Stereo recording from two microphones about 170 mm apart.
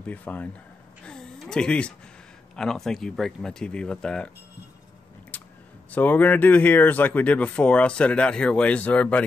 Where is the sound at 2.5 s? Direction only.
5° left (ahead or behind).